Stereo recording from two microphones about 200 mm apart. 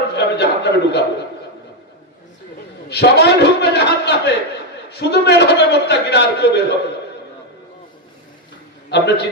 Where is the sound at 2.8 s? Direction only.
55° left (ahead or behind).